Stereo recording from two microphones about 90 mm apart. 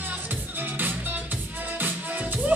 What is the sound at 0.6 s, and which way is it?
Music, 20° right (ahead or behind).